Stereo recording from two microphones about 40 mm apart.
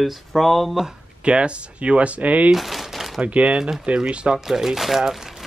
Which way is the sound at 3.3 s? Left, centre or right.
Right.